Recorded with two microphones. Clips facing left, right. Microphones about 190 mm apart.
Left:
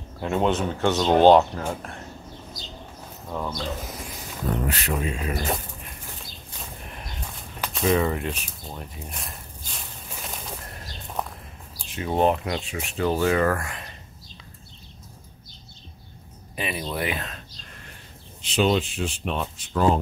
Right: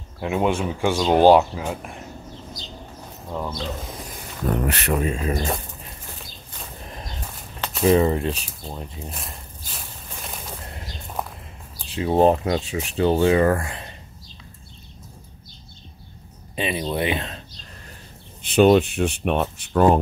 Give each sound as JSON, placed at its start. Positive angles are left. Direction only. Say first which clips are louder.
{"t": 0.2, "sound": "speech", "louder": "right 1 dB", "side_deg": -5}
{"t": 3.3, "sound": "speech", "louder": "right 1 dB", "side_deg": -10}
{"t": 4.5, "sound": "speech", "louder": "right 4 dB", "side_deg": -65}
{"t": 5.0, "sound": "speech", "louder": "right 4 dB", "side_deg": -35}
{"t": 7.8, "sound": "speech", "louder": "right 5 dB", "side_deg": -30}
{"t": 9.1, "sound": "a sound", "louder": "right 2 dB", "side_deg": -5}
{"t": 11.2, "sound": "a sound", "louder": "even", "side_deg": -5}
{"t": 11.9, "sound": "speech", "louder": "right 5 dB", "side_deg": -30}
{"t": 16.5, "sound": "speech", "louder": "right 5 dB", "side_deg": -25}
{"t": 18.4, "sound": "speech", "louder": "right 7 dB", "side_deg": -55}